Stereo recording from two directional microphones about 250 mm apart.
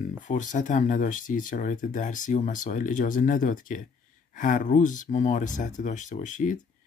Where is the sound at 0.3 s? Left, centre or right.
Left.